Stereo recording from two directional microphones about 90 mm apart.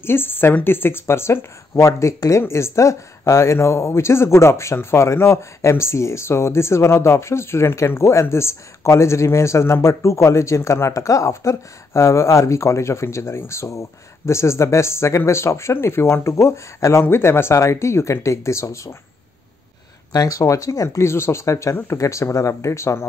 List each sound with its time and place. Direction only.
0.0 s speech: 25° left (ahead or behind)
20.1 s speech: 45° left (ahead or behind)